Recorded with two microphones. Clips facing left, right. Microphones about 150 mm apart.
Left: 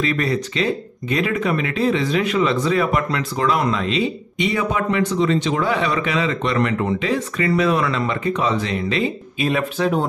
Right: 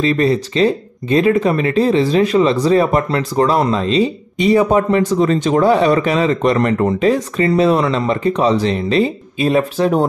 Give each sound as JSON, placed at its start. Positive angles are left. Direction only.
{"t": 0.0, "sound": "speech", "side_deg": -30}
{"t": 7.3, "sound": "speech", "side_deg": -30}